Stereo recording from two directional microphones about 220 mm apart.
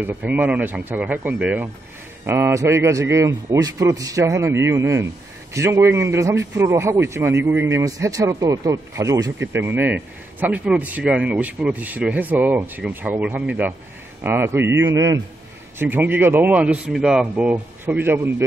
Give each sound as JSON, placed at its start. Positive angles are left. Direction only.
{"t": 0.0, "sound": "speech", "side_deg": -10}